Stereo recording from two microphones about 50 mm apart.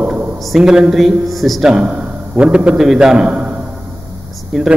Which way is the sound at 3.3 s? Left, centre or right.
Centre.